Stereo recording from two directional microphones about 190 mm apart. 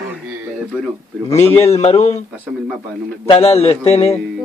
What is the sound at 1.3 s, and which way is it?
Speech, 35° left (ahead or behind).